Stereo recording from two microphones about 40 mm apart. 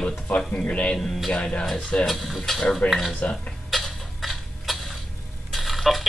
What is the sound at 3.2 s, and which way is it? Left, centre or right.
Speech, left.